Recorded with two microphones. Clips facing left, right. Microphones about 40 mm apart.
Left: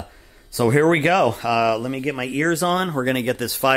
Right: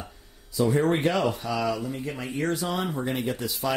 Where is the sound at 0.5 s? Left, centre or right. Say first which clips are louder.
Left 6 dB; left.